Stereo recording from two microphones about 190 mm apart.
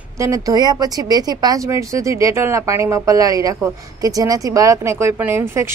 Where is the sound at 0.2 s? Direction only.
20° right (ahead or behind).